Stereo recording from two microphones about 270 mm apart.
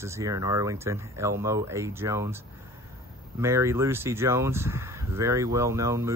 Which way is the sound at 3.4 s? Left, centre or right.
Centre.